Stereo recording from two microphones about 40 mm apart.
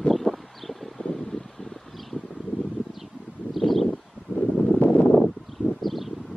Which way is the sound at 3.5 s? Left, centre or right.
Centre.